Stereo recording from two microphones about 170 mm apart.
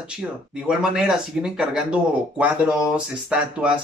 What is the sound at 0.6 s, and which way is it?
Speech, 5° right (ahead or behind).